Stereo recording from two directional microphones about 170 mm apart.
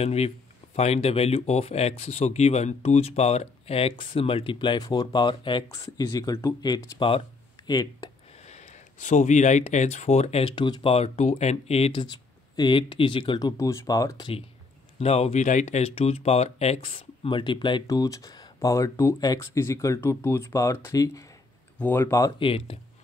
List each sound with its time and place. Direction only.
0.0 s speech: 40° left (ahead or behind)
8.5 s speech: 45° left (ahead or behind); by 14.3 s 20° left (ahead or behind)
15.0 s speech: 40° left (ahead or behind); by 22.3 s 15° left (ahead or behind)
22.4 s speech: 30° left (ahead or behind)